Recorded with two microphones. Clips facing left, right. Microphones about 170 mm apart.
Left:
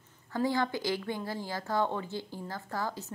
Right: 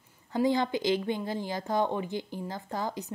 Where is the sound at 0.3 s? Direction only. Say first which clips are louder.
Right 3 dB; 20° right (ahead or behind).